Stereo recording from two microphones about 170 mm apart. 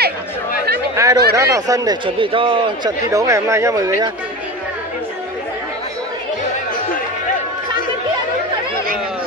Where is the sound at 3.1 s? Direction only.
20° right (ahead or behind).